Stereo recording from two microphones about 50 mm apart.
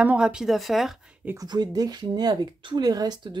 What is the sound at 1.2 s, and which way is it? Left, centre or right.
Speech, right.